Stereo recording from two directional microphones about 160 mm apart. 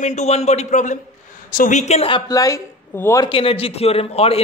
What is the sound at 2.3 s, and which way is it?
Speech, 20° left (ahead or behind).